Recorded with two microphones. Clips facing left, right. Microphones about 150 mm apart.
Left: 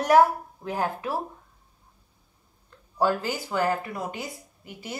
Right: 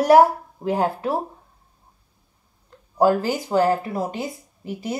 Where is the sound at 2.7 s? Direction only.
40° right (ahead or behind).